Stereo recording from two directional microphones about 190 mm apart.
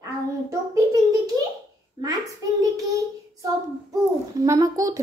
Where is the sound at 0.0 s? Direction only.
15° right (ahead or behind).